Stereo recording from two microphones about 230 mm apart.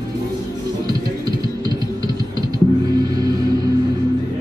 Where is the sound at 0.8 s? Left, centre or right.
Centre.